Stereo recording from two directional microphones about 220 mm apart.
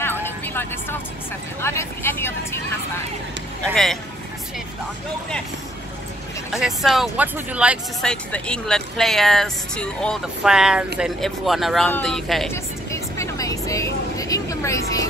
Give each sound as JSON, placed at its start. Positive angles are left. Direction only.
{"t": 0.0, "sound": "vehicle", "side_deg": 10}
{"t": 1.6, "sound": "speech", "side_deg": 10}
{"t": 3.7, "sound": "speech", "side_deg": 0}
{"t": 6.5, "sound": "speech", "side_deg": 0}
{"t": 12.9, "sound": "vehicle", "side_deg": 15}
{"t": 14.1, "sound": "a sound", "side_deg": 15}